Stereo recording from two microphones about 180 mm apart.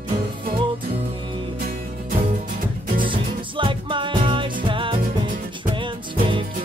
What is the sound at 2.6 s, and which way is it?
Music, 50° right (ahead or behind).